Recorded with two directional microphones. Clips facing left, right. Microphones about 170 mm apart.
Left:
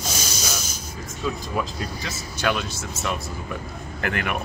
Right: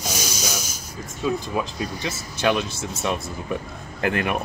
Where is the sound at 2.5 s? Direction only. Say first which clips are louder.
Right 3 dB; 25° right (ahead or behind).